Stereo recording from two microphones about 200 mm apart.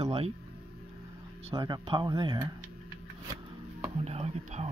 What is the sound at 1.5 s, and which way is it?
Speech, 20° right (ahead or behind).